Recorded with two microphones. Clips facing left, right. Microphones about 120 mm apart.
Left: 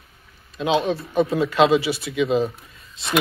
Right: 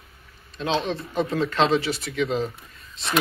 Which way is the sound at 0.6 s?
10° left (ahead or behind).